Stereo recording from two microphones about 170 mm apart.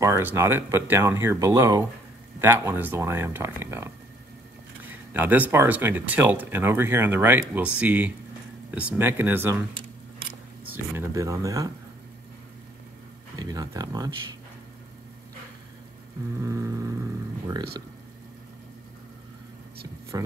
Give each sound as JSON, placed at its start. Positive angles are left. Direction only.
{"t": 0.0, "sound": "speech", "side_deg": -15}
{"t": 13.4, "sound": "speech", "side_deg": -20}
{"t": 16.3, "sound": "speech", "side_deg": -15}
{"t": 20.1, "sound": "speech", "side_deg": -20}